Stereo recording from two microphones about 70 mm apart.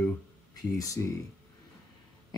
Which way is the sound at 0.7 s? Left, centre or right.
Left.